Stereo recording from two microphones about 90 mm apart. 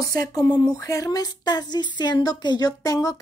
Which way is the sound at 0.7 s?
40° left (ahead or behind).